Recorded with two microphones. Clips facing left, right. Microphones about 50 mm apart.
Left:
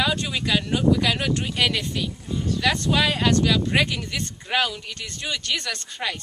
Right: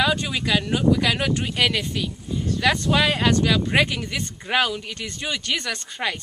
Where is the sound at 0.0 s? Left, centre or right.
Centre.